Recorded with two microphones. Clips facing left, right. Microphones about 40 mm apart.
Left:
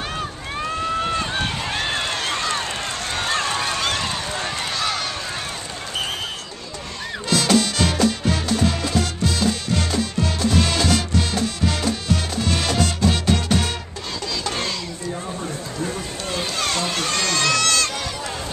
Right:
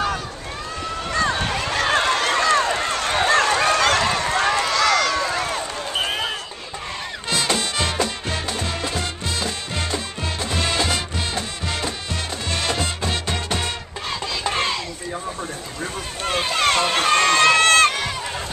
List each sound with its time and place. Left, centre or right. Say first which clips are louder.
1.9 s run: right 5 dB; right
3.3 s run: right 6 dB; right
7.2 s music: left 4 dB; centre
14.4 s a sound: right 5 dB; right
16.3 s run: right 6 dB; right